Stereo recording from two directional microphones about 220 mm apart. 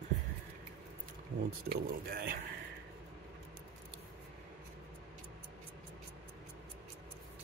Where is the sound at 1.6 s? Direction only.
45° right (ahead or behind).